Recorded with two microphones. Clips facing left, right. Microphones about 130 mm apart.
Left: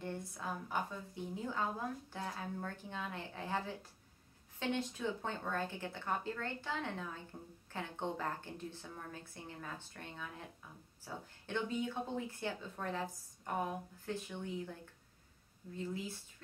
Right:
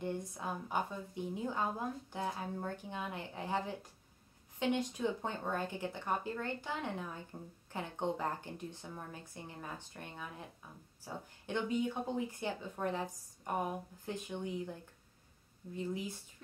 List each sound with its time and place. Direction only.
0.0 s a woman's voice: 15° right (ahead or behind)